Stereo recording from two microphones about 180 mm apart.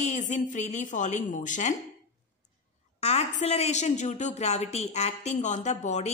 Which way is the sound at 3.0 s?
35° left (ahead or behind).